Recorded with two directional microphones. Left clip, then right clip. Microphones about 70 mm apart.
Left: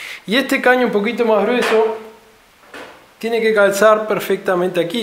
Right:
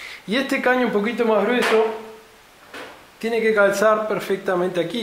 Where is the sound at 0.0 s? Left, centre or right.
Left; by 1.9 s centre.